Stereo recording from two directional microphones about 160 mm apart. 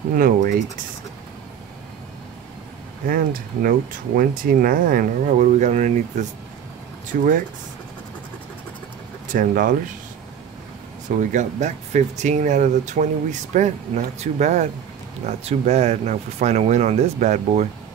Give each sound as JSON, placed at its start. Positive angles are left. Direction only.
{"t": 0.2, "sound": "speech", "side_deg": -60}
{"t": 3.1, "sound": "speech", "side_deg": -65}
{"t": 9.3, "sound": "speech", "side_deg": -60}
{"t": 11.1, "sound": "speech", "side_deg": -50}